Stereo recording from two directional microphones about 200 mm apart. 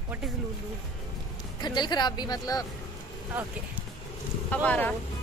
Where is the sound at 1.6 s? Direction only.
20° left (ahead or behind).